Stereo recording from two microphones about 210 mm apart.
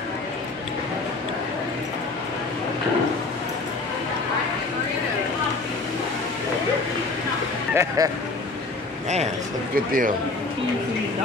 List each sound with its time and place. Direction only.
7.7 s speech: 15° right (ahead or behind)
9.8 s a man's voice: 40° right (ahead or behind)